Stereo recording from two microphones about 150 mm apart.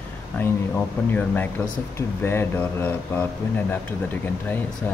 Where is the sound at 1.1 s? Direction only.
10° left (ahead or behind).